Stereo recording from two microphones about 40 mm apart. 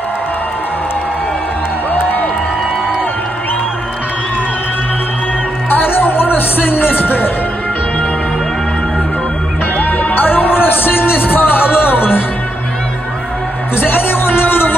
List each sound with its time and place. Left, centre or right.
2.0 s music: left
5.7 s music: left
9.8 s music: left
13.7 s music: left